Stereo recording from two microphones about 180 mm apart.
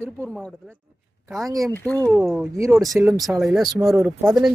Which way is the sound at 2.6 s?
20° right (ahead or behind).